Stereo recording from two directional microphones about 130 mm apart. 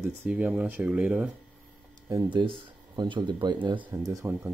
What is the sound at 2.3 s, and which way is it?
Speech, 40° right (ahead or behind).